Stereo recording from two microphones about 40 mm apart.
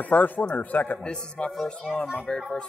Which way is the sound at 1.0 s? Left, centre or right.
Left.